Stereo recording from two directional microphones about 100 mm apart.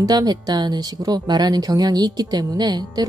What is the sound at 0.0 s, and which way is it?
Speech, 40° right (ahead or behind).